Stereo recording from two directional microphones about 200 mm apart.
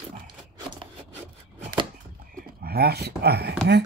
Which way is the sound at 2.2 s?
45° right (ahead or behind).